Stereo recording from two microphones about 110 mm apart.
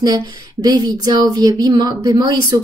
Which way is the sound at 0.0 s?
40° right (ahead or behind).